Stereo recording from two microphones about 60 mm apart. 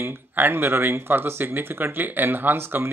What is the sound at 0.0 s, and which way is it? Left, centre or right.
Speech, right.